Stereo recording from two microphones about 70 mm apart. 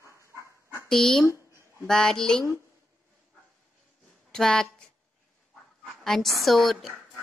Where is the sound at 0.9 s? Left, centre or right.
Centre.